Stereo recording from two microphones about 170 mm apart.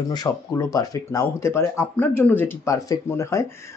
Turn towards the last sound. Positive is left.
turn(degrees=15)  # may be behind; listen again after turning